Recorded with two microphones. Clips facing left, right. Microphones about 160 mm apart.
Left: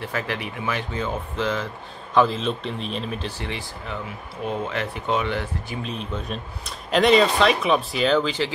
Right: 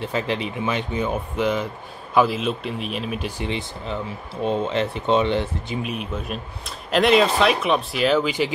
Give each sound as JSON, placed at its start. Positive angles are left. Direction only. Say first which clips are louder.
{"t": 0.0, "sound": "speech", "louder": "right 4 dB", "side_deg": -20}
{"t": 5.8, "sound": "speech", "louder": "right 2 dB", "side_deg": -10}